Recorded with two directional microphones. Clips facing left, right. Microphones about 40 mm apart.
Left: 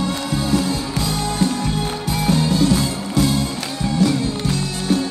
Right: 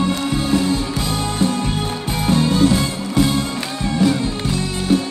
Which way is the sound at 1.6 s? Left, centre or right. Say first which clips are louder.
Even; right.